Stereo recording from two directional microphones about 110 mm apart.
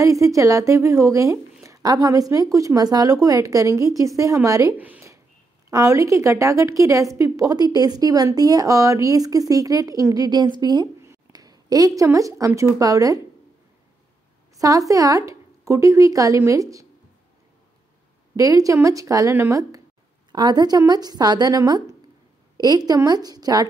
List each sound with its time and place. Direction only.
0.0 s a woman's voice: 30° right (ahead or behind)
4.7 s speech: 15° right (ahead or behind)
5.7 s a woman's voice: 30° right (ahead or behind)
14.6 s speech: 30° right (ahead or behind)
18.3 s speech: 30° right (ahead or behind)
20.2 s a woman's voice: 40° right (ahead or behind)